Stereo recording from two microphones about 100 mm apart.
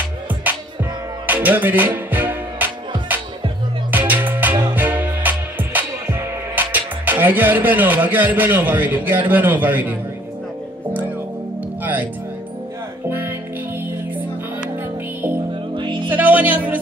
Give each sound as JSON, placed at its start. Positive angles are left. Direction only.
{"t": 0.5, "sound": "music", "side_deg": -15}
{"t": 3.9, "sound": "music", "side_deg": -20}
{"t": 11.8, "sound": "music", "side_deg": -15}
{"t": 15.7, "sound": "music", "side_deg": -50}
{"t": 16.1, "sound": "music", "side_deg": -15}